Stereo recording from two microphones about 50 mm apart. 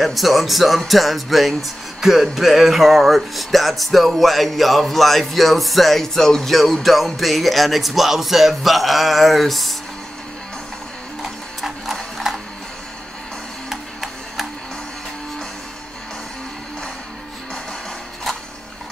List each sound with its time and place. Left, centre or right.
0.0 s speech: centre
11.2 s mechanisms: centre
13.7 s music: centre